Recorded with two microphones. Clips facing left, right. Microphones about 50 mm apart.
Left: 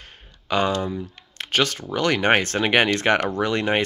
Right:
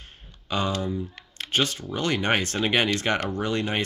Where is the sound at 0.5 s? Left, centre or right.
Left.